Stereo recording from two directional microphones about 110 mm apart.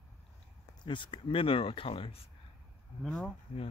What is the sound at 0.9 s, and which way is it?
Speech, 50° left (ahead or behind).